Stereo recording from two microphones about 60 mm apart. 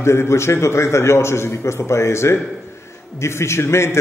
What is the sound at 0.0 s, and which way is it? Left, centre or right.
A man's voice, left.